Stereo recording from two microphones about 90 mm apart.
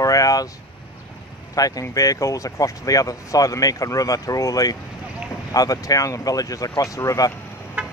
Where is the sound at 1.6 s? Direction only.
40° left (ahead or behind).